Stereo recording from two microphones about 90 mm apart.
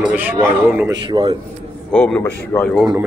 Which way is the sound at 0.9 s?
60° right (ahead or behind).